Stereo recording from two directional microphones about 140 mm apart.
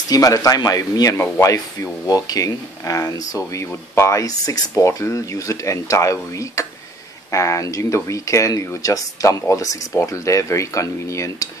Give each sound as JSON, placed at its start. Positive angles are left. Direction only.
{"t": 0.1, "sound": "speech", "side_deg": 25}